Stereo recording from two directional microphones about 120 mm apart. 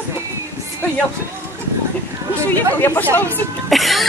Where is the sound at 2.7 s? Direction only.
15° left (ahead or behind).